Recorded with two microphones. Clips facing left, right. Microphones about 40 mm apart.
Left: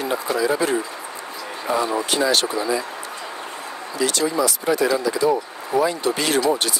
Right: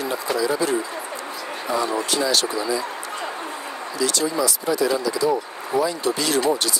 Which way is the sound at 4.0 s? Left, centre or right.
Left.